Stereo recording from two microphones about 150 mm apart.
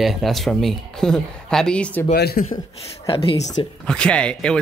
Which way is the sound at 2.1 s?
90° left.